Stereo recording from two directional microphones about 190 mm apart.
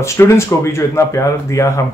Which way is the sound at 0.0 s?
15° left (ahead or behind).